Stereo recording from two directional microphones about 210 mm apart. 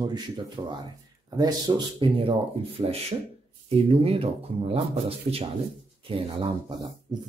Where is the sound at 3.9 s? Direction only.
30° right (ahead or behind).